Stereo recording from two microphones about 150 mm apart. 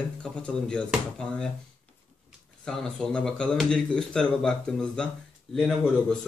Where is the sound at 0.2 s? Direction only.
5° left (ahead or behind).